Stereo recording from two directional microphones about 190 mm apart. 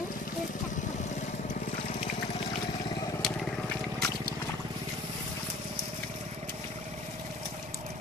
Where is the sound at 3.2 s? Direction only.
Centre (ahead or behind).